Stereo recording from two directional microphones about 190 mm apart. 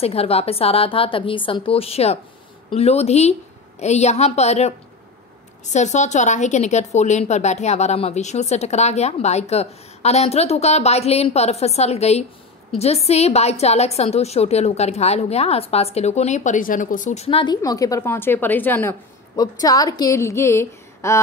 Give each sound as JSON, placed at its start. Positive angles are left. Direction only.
{"t": 0.0, "sound": "a woman's voice", "side_deg": 30}
{"t": 17.6, "sound": "a woman's voice", "side_deg": 20}